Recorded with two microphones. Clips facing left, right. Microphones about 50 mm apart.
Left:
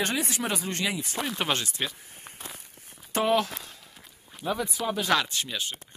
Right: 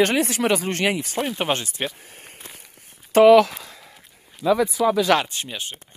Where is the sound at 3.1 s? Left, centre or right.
Right.